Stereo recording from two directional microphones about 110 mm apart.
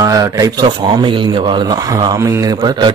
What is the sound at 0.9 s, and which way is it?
Speech, 50° right (ahead or behind).